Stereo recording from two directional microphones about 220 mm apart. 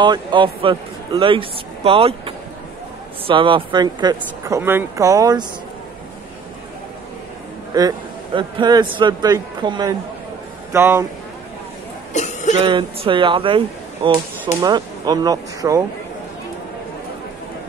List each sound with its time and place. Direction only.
0.0 s a man's voice: 20° right (ahead or behind)
7.7 s a man's voice: 20° right (ahead or behind)
12.1 s cough: 30° left (ahead or behind)
12.6 s a man's voice: 20° right (ahead or behind)